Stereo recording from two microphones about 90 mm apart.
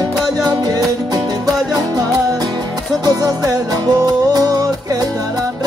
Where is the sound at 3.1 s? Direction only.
45° right (ahead or behind).